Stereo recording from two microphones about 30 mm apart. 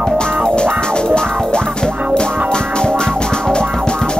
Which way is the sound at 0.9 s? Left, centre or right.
Left.